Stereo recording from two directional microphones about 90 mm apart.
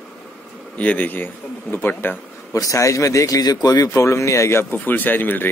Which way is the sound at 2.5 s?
35° left (ahead or behind).